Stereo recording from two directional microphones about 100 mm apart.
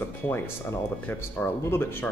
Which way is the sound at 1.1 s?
20° left (ahead or behind).